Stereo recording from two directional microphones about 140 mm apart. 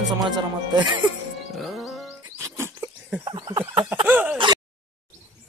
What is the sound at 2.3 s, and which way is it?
Wild animals, 20° right (ahead or behind).